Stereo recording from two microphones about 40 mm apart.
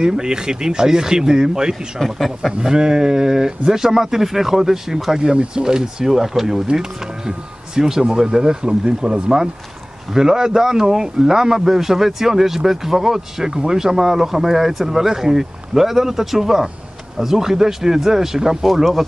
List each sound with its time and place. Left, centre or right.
0.0 s a man's voice: centre
2.0 s speech: centre
2.6 s a man's voice: centre
18.7 s speech: centre